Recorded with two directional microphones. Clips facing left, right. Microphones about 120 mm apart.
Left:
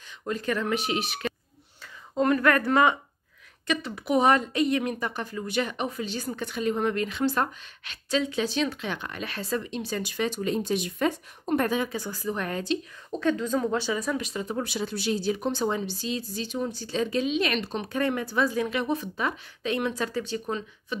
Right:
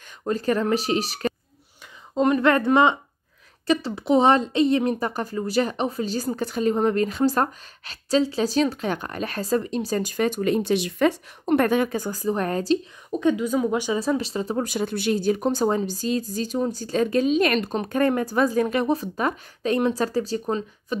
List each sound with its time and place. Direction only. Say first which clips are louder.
0.2 s a woman's voice: right 6 dB; 35° right (ahead or behind)
2.1 s a woman's voice: right 3 dB; 20° right (ahead or behind); by 12.7 s 40° right (ahead or behind)
13.1 s speech: right 4 dB; 15° right (ahead or behind)
13.9 s a woman's voice: right 5 dB; 30° right (ahead or behind)
14.7 s speech: right 5 dB; 50° right (ahead or behind)